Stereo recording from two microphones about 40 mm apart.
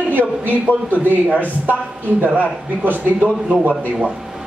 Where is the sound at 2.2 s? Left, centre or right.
Right.